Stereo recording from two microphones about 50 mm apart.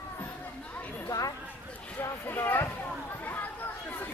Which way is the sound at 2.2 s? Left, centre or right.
Left.